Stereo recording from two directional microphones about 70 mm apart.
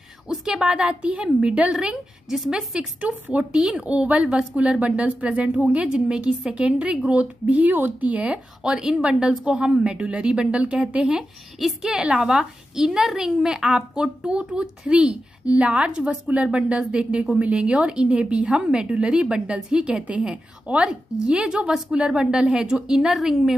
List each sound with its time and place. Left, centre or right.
0.3 s a woman's voice: centre
8.6 s a woman's voice: centre